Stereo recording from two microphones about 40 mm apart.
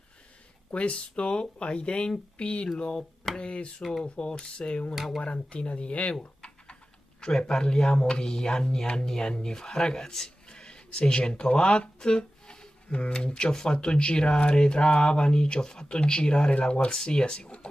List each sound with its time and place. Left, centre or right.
0.7 s speech: left
4.9 s speech: centre
5.2 s speech: left